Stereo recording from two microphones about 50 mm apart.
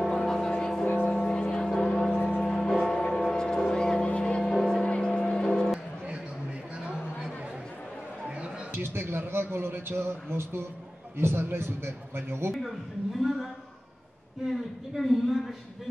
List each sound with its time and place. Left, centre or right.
0.0 s vehicle: centre
1.0 s music: centre
1.8 s a sound: centre
2.4 s music: centre
3.0 s vehicle: centre
3.3 s music: centre
8.7 s a man's voice: right
12.6 s a woman's voice: centre
14.5 s a woman's voice: centre